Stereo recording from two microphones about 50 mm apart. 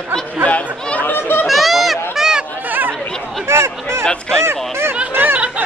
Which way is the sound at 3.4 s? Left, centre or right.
Right.